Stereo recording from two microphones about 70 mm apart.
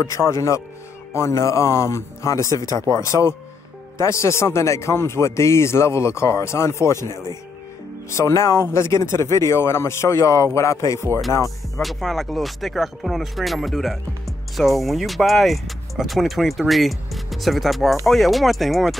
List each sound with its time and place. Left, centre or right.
0.0 s speech: left
11.8 s speech: centre